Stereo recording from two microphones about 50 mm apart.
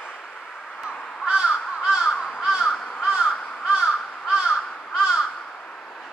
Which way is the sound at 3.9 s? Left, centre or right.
Centre.